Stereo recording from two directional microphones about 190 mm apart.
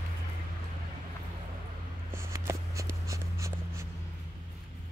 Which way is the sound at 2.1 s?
15° right (ahead or behind).